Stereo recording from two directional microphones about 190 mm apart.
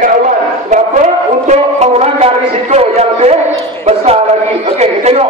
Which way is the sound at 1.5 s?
35° right (ahead or behind).